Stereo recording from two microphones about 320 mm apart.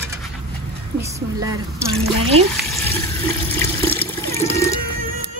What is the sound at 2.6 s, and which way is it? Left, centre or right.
Water, centre.